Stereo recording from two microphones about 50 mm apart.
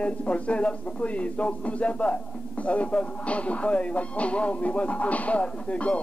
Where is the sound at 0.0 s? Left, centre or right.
Left.